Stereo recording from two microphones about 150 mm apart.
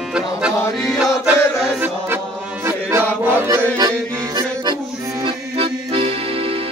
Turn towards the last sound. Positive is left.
turn(degrees=-40)  # may be behind; listen again after turning